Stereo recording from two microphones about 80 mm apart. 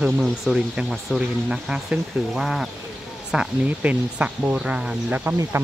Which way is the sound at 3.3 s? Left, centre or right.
Centre.